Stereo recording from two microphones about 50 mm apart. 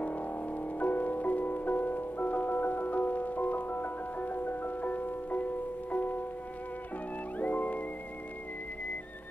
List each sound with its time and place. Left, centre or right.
0.0 s music: left
7.3 s music: left